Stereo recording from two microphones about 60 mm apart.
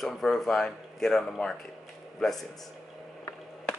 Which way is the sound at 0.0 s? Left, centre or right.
Centre.